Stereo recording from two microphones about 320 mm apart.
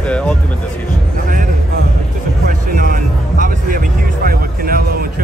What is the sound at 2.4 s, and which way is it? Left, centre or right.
Music, right.